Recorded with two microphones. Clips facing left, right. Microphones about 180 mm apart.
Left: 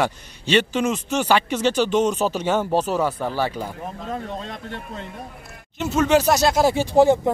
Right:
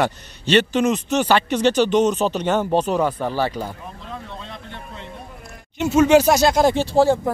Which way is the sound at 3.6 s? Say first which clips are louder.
Right 1 dB; 10° right (ahead or behind).